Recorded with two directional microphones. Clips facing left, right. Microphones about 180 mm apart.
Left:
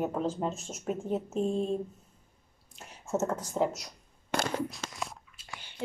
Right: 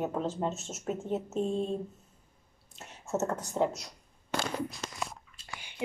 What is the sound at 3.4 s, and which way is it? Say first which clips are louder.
Speech: even; centre (ahead or behind).